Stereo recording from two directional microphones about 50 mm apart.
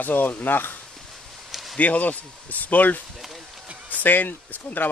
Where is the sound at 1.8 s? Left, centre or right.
Left.